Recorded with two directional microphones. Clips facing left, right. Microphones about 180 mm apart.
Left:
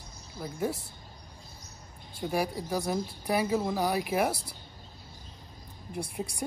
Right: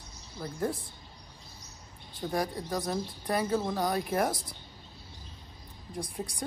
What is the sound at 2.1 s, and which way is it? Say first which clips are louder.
Speech: left 1 dB; 10° left (ahead or behind).